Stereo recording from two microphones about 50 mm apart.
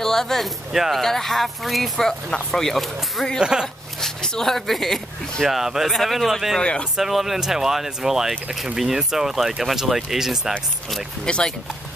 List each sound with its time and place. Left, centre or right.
0.0 s speech: centre
0.7 s speech: centre
1.0 s speech: centre
3.3 s speech: centre
3.6 s speech: centre
5.4 s speech: centre
6.6 s speech: left
7.0 s speech: centre
11.2 s speech: centre